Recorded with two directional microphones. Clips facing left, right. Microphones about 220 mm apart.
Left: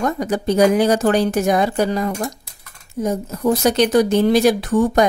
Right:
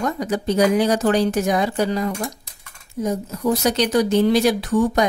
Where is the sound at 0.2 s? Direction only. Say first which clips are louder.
Left 3 dB; 50° left (ahead or behind).